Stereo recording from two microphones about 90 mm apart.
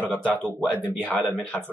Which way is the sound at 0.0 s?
20° left (ahead or behind).